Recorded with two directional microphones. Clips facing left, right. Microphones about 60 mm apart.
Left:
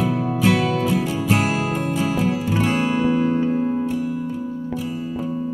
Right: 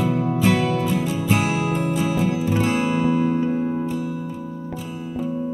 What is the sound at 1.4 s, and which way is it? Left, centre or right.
Music, left.